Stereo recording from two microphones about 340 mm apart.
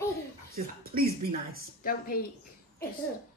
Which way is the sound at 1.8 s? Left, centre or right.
Left.